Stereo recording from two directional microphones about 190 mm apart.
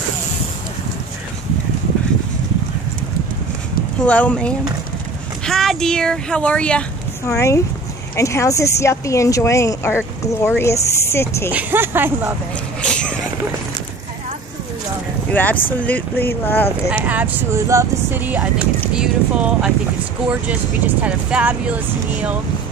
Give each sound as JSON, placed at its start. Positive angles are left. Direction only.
{"t": 4.0, "sound": "speech", "side_deg": 5}
{"t": 11.5, "sound": "speech", "side_deg": -10}
{"t": 12.8, "sound": "a sound", "side_deg": 5}
{"t": 15.4, "sound": "speech", "side_deg": 10}
{"t": 16.9, "sound": "speech", "side_deg": -10}